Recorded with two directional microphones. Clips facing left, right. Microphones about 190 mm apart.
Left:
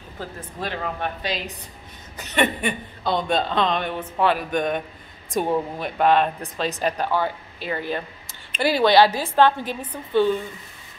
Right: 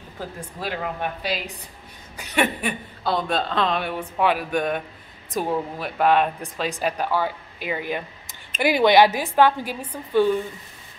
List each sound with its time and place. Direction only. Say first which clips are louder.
0.6 s speech: even; 5° right (ahead or behind)